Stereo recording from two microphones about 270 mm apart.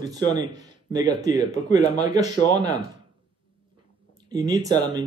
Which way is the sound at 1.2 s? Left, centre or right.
Centre.